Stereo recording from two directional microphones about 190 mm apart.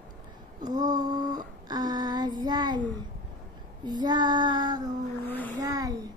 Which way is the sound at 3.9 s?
20° right (ahead or behind).